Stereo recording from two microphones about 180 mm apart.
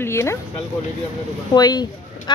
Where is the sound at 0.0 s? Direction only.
15° left (ahead or behind).